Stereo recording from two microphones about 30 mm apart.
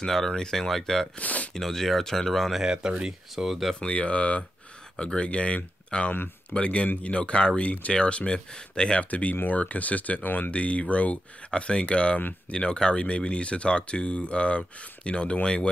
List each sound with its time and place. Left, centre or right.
0.0 s speech: centre
1.2 s speech: left
1.5 s speech: centre
2.6 s speech: right
3.4 s speech: centre
3.9 s speech: left
4.9 s speech: left
9.1 s speech: left